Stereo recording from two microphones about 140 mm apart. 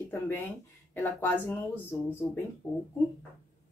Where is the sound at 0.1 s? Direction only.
15° left (ahead or behind).